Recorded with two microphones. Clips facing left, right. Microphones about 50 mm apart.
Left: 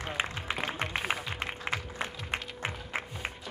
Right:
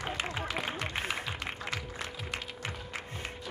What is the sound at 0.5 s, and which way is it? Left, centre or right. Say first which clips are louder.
Music: left 1 dB; centre.